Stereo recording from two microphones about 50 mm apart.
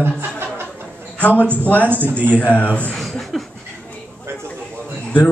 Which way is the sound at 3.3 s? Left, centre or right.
Centre.